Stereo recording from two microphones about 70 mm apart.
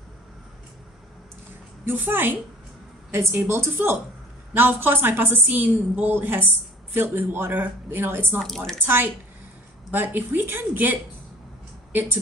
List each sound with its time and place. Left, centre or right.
1.9 s a woman's voice: right
8.4 s speech: centre
8.8 s a woman's voice: right